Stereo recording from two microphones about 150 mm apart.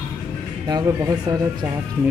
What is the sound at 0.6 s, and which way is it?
Speech, 25° right (ahead or behind).